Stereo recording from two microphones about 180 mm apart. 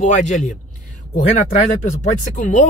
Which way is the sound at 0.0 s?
40° left (ahead or behind).